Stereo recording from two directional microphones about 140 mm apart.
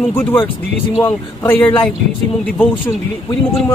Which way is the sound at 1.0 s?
15° left (ahead or behind).